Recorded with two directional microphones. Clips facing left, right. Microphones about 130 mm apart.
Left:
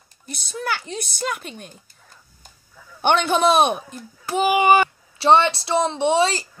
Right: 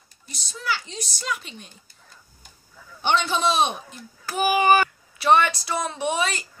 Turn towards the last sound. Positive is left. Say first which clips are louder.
# left 7 dB
turn(degrees=30)  # may be behind; listen again after turning